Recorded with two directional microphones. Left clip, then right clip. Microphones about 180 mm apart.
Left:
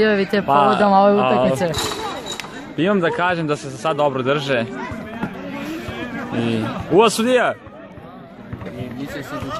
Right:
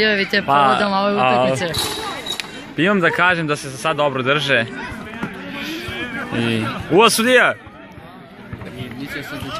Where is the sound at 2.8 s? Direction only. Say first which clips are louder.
Right 2 dB; 10° right (ahead or behind).